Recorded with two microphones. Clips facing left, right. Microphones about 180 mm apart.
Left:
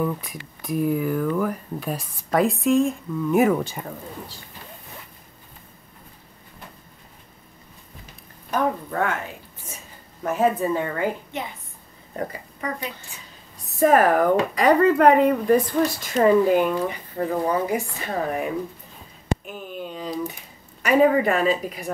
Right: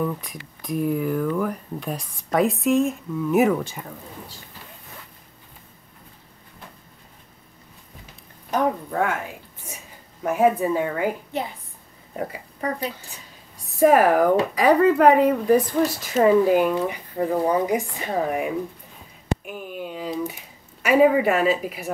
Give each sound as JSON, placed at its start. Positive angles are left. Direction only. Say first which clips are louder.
{"t": 0.0, "sound": "speech", "louder": "left 1 dB", "side_deg": 5}
{"t": 8.5, "sound": "speech", "louder": "right 1 dB", "side_deg": -20}
{"t": 8.9, "sound": "speech", "louder": "right 1 dB", "side_deg": -10}
{"t": 10.2, "sound": "speech", "louder": "right 2 dB", "side_deg": -15}
{"t": 12.5, "sound": "speech", "louder": "right 3 dB", "side_deg": -35}
{"t": 13.7, "sound": "speech", "louder": "right 1 dB", "side_deg": -10}
{"t": 19.4, "sound": "a sound", "louder": "right 1 dB", "side_deg": -10}
{"t": 20.8, "sound": "speech", "louder": "right 1 dB", "side_deg": -10}